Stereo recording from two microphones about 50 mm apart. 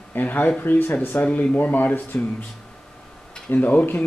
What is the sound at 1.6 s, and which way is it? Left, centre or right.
Speech, left.